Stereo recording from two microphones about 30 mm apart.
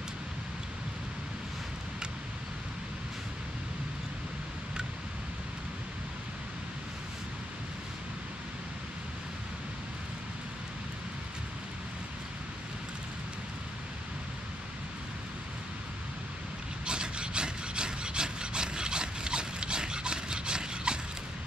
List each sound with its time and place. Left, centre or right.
16.8 s rub: right